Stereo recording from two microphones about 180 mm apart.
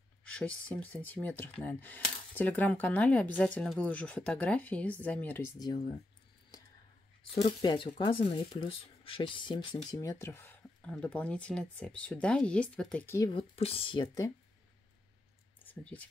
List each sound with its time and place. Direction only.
0.3 s speech: 5° left (ahead or behind)
5.6 s speech: 25° left (ahead or behind)
7.6 s speech: 25° left (ahead or behind)
9.9 s speech: 15° left (ahead or behind)
13.3 s speech: 30° left (ahead or behind)
15.6 s a sound: 10° left (ahead or behind)